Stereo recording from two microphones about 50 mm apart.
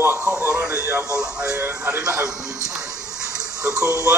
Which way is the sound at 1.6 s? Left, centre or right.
Right.